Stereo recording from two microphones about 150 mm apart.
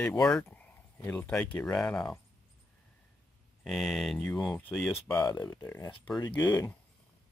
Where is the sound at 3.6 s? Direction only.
Centre (ahead or behind).